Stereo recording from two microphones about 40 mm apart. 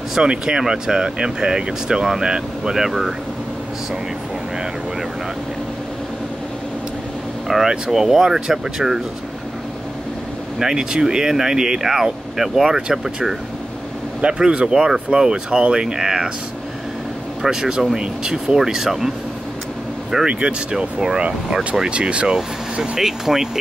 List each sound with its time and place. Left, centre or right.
0.1 s speech: centre
2.7 s speech: centre
7.4 s speech: centre
10.6 s speech: centre
14.2 s speech: right
14.7 s speech: centre
17.4 s speech: centre
18.6 s speech: centre
20.2 s speech: right
22.9 s speech: centre